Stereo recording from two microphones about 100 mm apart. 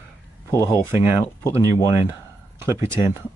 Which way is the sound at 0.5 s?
30° left (ahead or behind).